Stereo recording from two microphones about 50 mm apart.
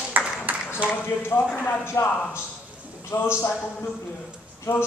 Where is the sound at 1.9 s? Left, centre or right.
Left.